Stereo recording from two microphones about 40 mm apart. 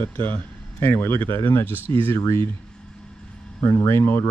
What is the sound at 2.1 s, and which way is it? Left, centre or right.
Speech, left.